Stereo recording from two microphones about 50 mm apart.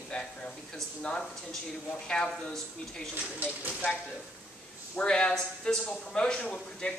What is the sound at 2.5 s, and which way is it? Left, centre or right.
Speech, centre.